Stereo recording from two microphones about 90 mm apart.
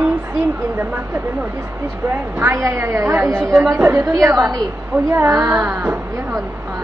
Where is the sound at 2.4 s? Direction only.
30° right (ahead or behind).